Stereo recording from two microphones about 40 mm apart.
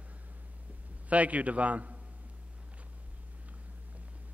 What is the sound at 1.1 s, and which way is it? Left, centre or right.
Speech, right.